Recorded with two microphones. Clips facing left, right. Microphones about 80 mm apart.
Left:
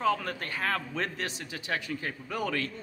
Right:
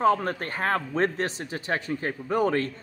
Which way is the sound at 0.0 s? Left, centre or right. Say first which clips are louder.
Right 6 dB; right.